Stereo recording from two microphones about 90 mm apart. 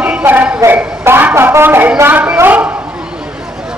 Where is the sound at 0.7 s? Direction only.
25° right (ahead or behind).